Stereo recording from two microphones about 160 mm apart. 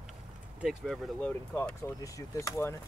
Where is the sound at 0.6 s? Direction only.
Centre (ahead or behind).